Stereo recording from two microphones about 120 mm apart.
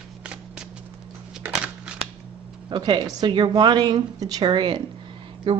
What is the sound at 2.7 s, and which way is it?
A woman's voice, 40° right (ahead or behind).